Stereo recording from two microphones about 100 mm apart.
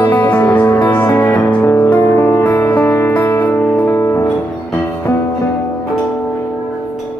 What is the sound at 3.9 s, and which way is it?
Music, 25° left (ahead or behind).